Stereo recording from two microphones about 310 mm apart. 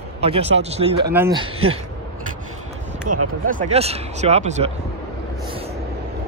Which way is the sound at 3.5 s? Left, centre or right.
Right.